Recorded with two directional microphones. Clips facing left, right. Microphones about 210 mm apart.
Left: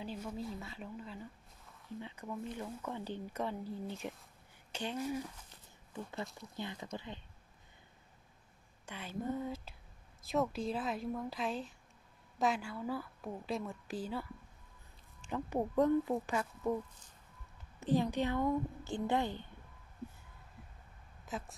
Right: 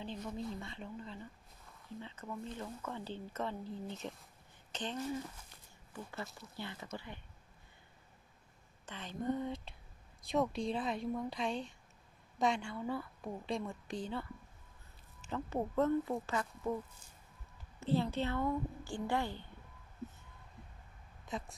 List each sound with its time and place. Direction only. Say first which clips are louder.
0.0 s speech: even; 10° left (ahead or behind)
6.5 s speech: left 2 dB; 15° left (ahead or behind)
8.8 s a woman's voice: right 1 dB; 10° left (ahead or behind)
15.3 s speech: left 2 dB; 15° left (ahead or behind)
17.7 s speech: left 2 dB; 15° left (ahead or behind)
21.3 s speech: even; 5° left (ahead or behind)